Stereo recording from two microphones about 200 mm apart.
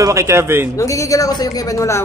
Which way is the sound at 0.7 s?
15° left (ahead or behind).